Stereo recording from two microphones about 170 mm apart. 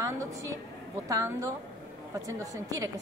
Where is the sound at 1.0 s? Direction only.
20° right (ahead or behind).